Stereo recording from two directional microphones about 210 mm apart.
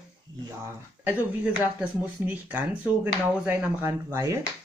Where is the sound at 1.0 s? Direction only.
5° right (ahead or behind).